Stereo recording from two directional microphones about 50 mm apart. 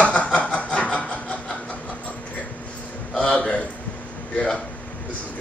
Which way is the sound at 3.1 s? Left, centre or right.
Centre.